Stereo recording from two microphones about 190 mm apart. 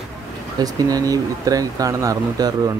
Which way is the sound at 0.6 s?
20° right (ahead or behind).